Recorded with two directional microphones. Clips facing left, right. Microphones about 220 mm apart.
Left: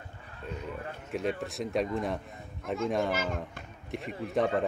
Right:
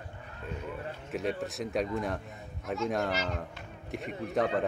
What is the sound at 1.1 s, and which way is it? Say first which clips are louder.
A man's voice: left 1 dB; centre (ahead or behind).